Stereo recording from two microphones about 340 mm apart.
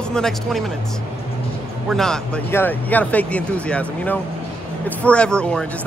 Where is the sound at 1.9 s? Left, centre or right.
Centre.